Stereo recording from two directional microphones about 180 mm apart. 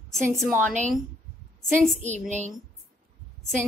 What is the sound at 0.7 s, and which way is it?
Speech, 45° right (ahead or behind).